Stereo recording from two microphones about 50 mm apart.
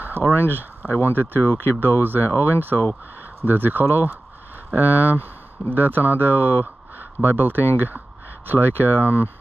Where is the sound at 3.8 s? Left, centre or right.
Left.